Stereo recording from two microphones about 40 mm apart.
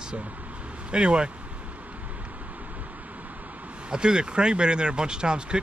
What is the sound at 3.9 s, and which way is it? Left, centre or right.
Speech, right.